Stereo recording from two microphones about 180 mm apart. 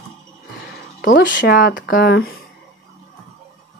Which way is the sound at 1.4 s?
55° left (ahead or behind).